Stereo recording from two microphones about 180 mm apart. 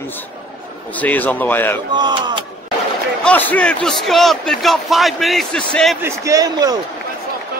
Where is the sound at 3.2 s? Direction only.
10° left (ahead or behind).